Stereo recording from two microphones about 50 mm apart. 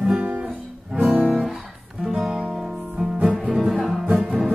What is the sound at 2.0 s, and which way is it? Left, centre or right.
Music, centre.